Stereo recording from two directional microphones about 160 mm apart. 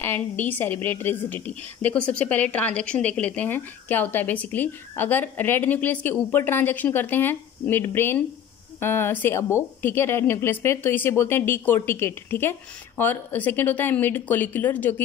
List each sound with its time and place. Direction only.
0.0 s speech: 10° left (ahead or behind)